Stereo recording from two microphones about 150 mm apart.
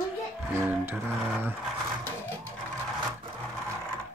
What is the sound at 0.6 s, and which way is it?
Speech, 15° right (ahead or behind).